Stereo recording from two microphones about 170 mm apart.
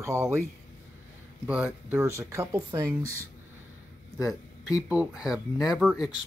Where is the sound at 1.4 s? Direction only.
5° right (ahead or behind).